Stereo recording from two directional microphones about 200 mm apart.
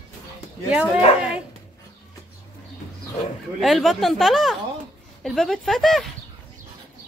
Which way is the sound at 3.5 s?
Centre (ahead or behind).